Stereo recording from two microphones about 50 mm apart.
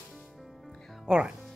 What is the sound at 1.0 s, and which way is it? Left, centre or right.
Speech, centre.